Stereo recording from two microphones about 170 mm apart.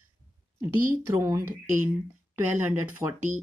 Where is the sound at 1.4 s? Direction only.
50° right (ahead or behind).